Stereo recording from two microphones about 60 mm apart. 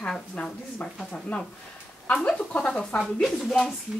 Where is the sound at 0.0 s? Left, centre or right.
Centre.